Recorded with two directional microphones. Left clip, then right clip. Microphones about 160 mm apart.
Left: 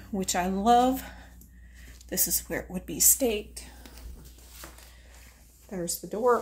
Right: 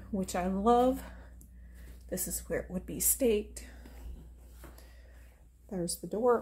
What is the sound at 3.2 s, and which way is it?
Speech, 30° right (ahead or behind).